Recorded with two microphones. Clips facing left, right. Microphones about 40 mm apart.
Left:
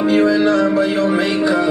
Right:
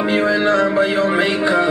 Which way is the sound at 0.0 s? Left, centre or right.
Right.